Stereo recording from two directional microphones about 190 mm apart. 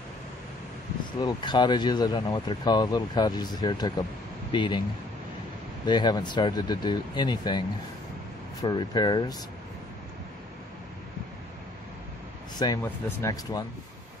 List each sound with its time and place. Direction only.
1.2 s speech: 25° left (ahead or behind)
5.9 s speech: 20° left (ahead or behind)
12.5 s speech: 20° left (ahead or behind)